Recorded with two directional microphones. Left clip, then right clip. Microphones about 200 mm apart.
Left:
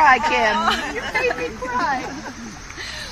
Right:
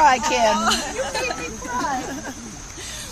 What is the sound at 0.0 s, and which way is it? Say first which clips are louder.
Speech: left 2 dB; 50° right (ahead or behind).